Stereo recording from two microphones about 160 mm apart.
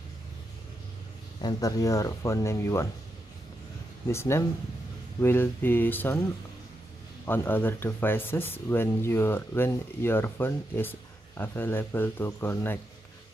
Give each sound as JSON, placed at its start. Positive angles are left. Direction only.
{"t": 1.4, "sound": "speech", "side_deg": 20}
{"t": 4.1, "sound": "speech", "side_deg": 15}
{"t": 7.2, "sound": "speech", "side_deg": 10}